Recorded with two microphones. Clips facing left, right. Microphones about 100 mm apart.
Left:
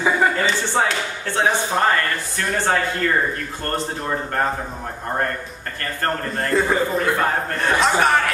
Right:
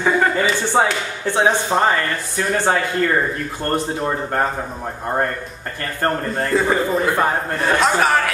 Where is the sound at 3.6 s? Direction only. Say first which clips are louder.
Right 7 dB; 15° right (ahead or behind).